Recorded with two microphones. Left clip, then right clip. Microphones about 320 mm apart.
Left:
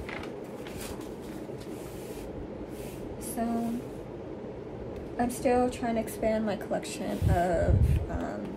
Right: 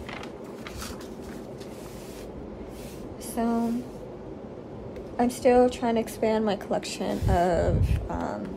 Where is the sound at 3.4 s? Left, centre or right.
Right.